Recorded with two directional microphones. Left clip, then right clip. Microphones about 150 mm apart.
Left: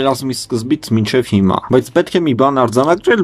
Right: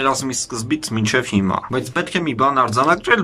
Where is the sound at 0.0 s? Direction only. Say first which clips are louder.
Left 3 dB; 30° left (ahead or behind).